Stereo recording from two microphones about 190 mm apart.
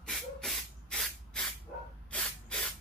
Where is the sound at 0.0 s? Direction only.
Centre (ahead or behind).